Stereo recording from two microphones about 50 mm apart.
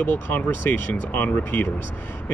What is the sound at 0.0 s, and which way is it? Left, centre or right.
Speech, left.